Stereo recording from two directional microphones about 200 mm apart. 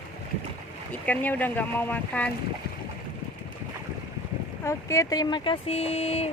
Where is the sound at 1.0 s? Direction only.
10° left (ahead or behind).